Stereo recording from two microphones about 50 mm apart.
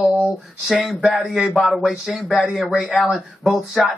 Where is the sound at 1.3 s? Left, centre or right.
Centre.